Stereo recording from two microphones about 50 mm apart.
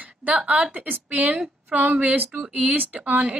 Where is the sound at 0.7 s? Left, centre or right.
Right.